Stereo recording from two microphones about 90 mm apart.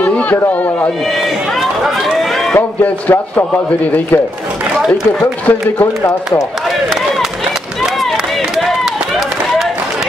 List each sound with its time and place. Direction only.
0.0 s speech: 15° left (ahead or behind)
1.8 s run: centre (ahead or behind)
2.5 s speech: 20° left (ahead or behind)
5.5 s speech: 30° left (ahead or behind)